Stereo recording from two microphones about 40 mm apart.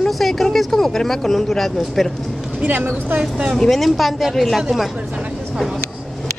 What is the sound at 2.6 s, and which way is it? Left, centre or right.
Speech, right.